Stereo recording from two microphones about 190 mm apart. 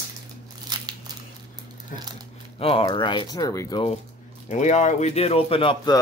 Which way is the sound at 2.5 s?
30° left (ahead or behind).